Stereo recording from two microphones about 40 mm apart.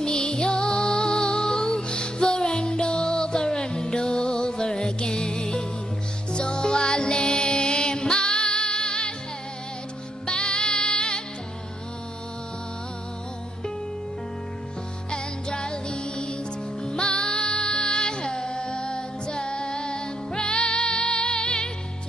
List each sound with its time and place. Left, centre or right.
0.0 s music: left
10.2 s music: left
15.0 s music: left